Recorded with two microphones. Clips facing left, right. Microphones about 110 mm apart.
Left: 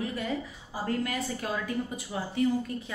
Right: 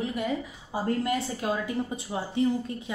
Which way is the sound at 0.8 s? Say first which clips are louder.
Right 3 dB; 25° right (ahead or behind).